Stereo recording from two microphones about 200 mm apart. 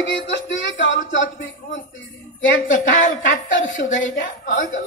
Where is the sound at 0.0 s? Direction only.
65° left (ahead or behind).